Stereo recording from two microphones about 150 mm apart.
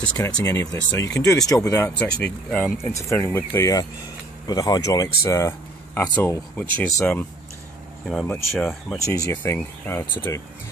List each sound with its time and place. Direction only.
0.2 s speech: 20° left (ahead or behind)
2.2 s speech: 10° left (ahead or behind)
8.9 s speech: 20° left (ahead or behind)